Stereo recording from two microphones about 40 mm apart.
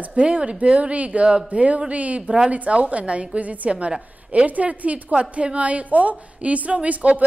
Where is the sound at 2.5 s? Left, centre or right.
Right.